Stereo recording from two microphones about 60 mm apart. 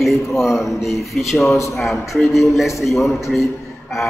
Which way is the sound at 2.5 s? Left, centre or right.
Centre.